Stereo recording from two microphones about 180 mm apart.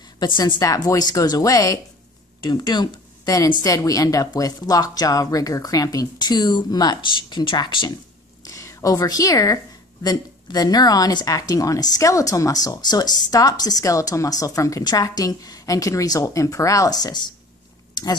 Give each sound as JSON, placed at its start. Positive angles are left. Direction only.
{"t": 0.2, "sound": "a woman's voice", "side_deg": 25}